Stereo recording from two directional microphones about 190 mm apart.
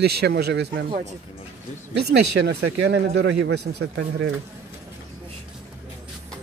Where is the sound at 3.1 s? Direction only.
65° right (ahead or behind).